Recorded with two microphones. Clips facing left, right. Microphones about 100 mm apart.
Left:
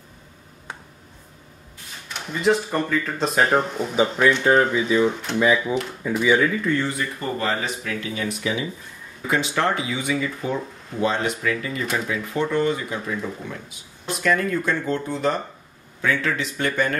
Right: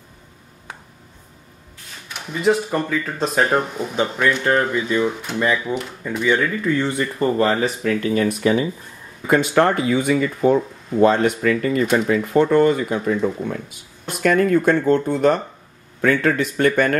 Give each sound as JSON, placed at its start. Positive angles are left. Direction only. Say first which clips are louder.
{"t": 2.0, "sound": "speech", "louder": "right 2 dB", "side_deg": -5}
{"t": 7.2, "sound": "speech", "louder": "right 10 dB", "side_deg": -40}
{"t": 9.3, "sound": "speech", "louder": "right 6 dB", "side_deg": -50}